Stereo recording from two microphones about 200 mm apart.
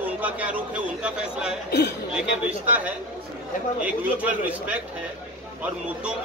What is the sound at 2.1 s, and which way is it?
A man's voice, 5° right (ahead or behind).